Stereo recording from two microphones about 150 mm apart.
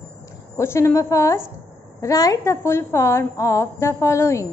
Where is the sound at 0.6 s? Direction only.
15° left (ahead or behind).